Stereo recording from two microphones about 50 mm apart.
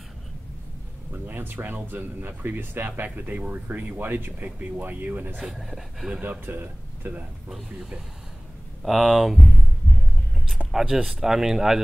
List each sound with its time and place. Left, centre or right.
1.1 s speech: right
5.4 s speech: centre
6.4 s speech: right
7.4 s speech: centre
10.7 s speech: centre